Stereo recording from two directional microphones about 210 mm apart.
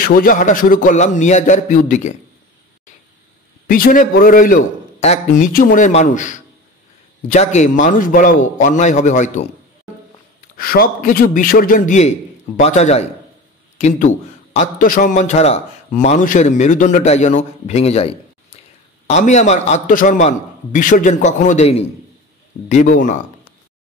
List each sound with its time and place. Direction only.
0.0 s a man's voice: 45° left (ahead or behind)
3.6 s a man's voice: 40° left (ahead or behind)
10.6 s a man's voice: 45° left (ahead or behind)